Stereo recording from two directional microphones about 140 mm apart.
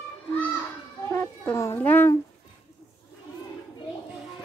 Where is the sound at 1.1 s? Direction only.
15° left (ahead or behind).